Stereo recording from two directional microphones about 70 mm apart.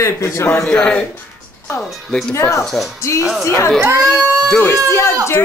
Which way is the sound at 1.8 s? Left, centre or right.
Centre.